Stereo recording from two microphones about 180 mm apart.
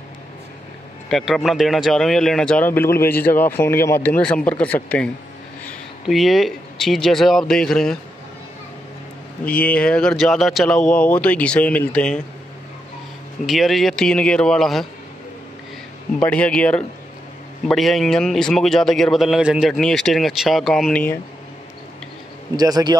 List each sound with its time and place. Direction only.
1.0 s speech: centre (ahead or behind)
9.4 s speech: 10° left (ahead or behind)
13.5 s speech: centre (ahead or behind)
16.3 s speech: 5° left (ahead or behind)
22.6 s a man's voice: 20° right (ahead or behind)